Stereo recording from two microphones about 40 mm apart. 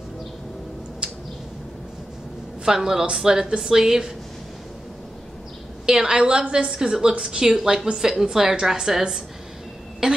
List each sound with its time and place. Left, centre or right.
1.0 s a sound: right
2.6 s a woman's voice: centre
5.9 s a woman's voice: centre
6.1 s a woman's voice: right
6.7 s a woman's voice: centre